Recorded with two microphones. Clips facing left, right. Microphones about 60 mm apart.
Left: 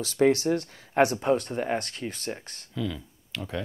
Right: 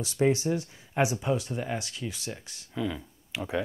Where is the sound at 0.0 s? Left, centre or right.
Left.